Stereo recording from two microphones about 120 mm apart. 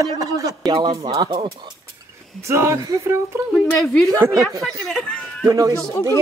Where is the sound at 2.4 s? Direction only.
25° right (ahead or behind).